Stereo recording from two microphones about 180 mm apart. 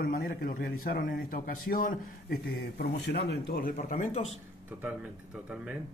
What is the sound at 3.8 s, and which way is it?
Speech, 40° left (ahead or behind).